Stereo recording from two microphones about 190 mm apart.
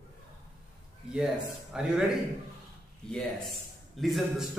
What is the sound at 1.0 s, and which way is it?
Speech, 5° right (ahead or behind).